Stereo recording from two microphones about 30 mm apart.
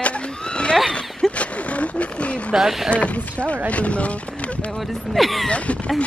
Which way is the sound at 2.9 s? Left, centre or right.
Left.